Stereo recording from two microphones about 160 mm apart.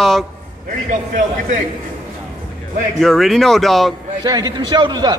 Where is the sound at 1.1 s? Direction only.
50° right (ahead or behind).